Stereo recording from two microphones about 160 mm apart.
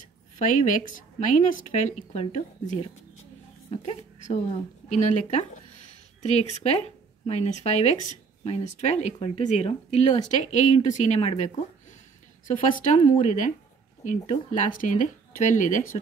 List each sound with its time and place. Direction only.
0.0 s a woman's voice: 55° left (ahead or behind)